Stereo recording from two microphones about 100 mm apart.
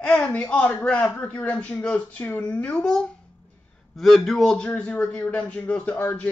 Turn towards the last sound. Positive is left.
turn(degrees=15)  # may be behind; listen again after turning